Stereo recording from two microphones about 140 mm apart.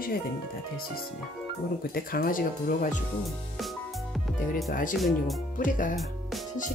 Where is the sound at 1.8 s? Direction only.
90° left; by 3.0 s 65° left (ahead or behind).